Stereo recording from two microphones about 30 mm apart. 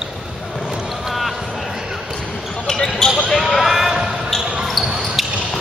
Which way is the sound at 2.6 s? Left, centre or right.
Centre.